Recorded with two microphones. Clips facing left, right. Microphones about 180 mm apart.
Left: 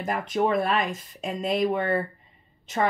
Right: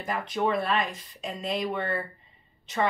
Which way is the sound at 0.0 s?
45° left (ahead or behind).